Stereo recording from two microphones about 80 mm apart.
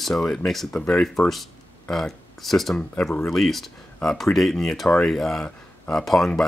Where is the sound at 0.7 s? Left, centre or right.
Centre.